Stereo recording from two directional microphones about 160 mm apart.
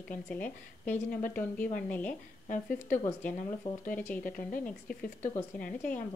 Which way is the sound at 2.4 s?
55° left (ahead or behind).